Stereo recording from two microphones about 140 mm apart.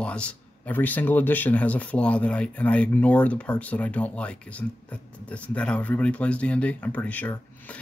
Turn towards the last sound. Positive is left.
turn(degrees=10)  # may be behind; listen again after turning